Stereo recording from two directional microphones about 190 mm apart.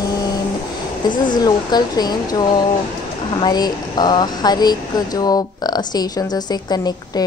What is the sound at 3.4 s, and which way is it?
Speech, 20° left (ahead or behind).